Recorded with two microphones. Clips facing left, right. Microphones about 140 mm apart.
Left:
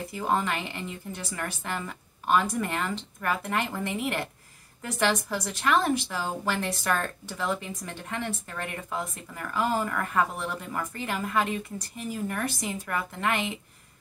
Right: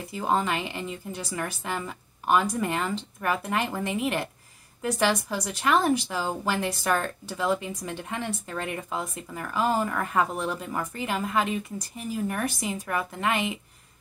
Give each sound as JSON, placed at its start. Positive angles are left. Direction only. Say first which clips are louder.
{"t": 0.1, "sound": "a woman's voice", "louder": "right 2 dB", "side_deg": -15}